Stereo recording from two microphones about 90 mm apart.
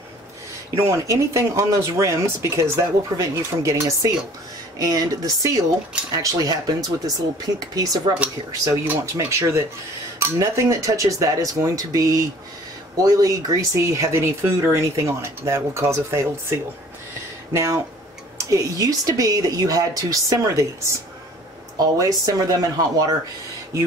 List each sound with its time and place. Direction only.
0.8 s speech: 35° right (ahead or behind)